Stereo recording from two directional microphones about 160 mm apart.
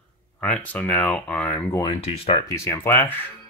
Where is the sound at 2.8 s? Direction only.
15° left (ahead or behind).